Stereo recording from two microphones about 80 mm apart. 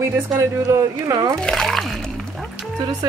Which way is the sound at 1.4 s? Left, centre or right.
Centre.